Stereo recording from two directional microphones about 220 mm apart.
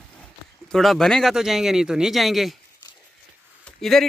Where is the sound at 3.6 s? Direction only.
Centre (ahead or behind).